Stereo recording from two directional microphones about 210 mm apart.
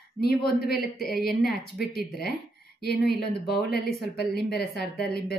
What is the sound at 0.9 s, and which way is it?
Speech, centre (ahead or behind).